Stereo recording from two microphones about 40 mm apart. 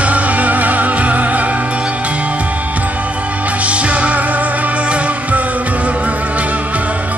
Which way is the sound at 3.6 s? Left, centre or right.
Right.